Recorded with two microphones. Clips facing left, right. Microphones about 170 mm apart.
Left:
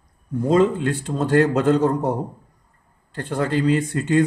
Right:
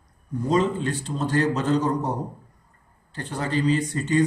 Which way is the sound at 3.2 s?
60° left (ahead or behind).